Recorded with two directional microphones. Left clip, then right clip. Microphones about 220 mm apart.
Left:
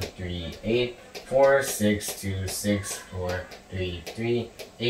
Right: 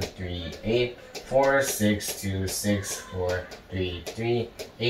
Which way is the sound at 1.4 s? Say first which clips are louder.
Left 2 dB; centre (ahead or behind).